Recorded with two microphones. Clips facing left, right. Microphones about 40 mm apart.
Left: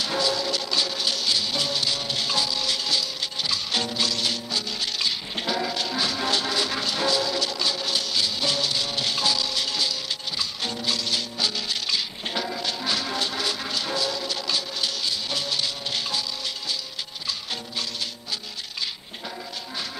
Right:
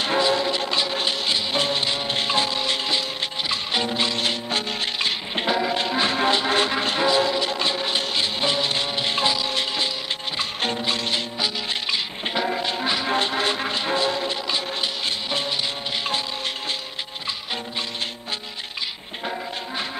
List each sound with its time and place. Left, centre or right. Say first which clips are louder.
0.0 s music: right 5 dB; right